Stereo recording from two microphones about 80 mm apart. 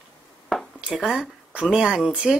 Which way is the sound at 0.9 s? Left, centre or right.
Centre.